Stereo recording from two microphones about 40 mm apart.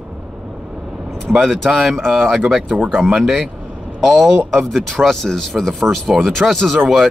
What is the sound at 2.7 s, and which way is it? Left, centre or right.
Speech, right.